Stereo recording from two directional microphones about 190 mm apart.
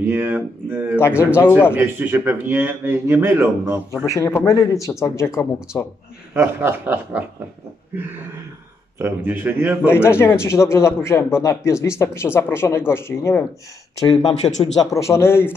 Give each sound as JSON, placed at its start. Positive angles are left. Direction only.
{"t": 0.0, "sound": "speech", "side_deg": -10}
{"t": 1.2, "sound": "speech", "side_deg": 10}
{"t": 1.7, "sound": "speech", "side_deg": -10}
{"t": 4.1, "sound": "speech", "side_deg": 15}
{"t": 6.3, "sound": "speech", "side_deg": -10}
{"t": 8.9, "sound": "speech", "side_deg": -10}
{"t": 9.8, "sound": "speech", "side_deg": 10}